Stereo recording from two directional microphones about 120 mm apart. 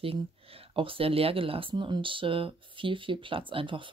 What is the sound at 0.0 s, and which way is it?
Speech, 50° right (ahead or behind).